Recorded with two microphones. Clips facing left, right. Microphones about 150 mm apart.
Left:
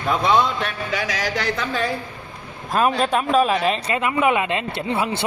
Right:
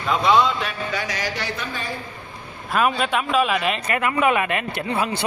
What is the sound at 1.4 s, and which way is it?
Speech, 90° left.